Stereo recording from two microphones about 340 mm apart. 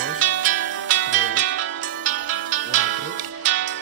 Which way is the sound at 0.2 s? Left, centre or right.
Right.